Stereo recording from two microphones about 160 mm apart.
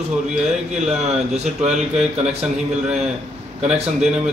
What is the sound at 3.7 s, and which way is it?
Speech, 5° right (ahead or behind).